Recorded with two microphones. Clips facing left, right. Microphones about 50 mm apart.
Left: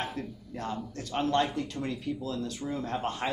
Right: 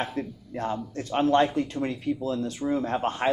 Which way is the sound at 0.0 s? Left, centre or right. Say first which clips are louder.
Right 5 dB; right.